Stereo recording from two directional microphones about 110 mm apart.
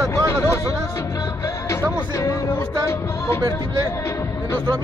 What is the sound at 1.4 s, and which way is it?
Music, 25° left (ahead or behind).